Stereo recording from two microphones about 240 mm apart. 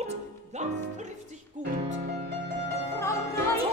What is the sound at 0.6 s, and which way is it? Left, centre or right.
Music, right.